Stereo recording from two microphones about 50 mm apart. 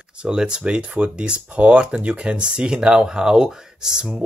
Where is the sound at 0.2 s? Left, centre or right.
Centre.